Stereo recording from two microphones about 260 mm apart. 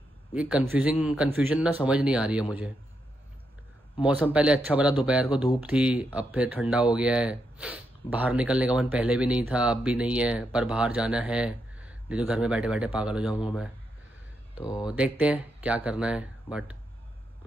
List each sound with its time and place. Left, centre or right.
0.3 s speech: centre
4.0 s speech: centre
14.6 s speech: centre
14.9 s speech: centre